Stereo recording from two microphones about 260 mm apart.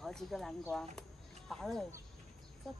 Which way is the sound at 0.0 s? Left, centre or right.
Centre.